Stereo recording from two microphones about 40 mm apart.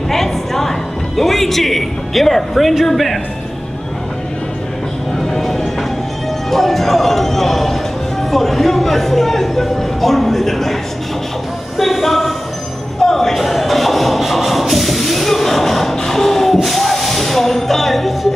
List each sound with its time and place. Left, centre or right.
0.1 s speech: centre
5.2 s vehicle: centre
6.5 s speech: centre
13.0 s a sound: centre
16.6 s music: centre